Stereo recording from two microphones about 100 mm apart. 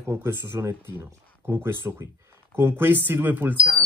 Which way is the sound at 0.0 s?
25° right (ahead or behind).